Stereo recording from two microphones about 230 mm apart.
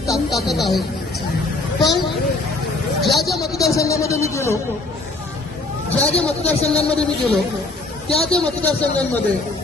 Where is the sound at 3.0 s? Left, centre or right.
Centre.